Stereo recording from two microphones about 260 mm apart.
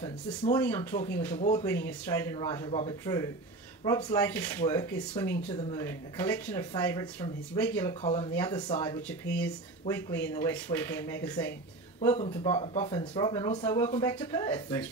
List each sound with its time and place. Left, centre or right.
0.0 s speech: centre
8.0 s speech: left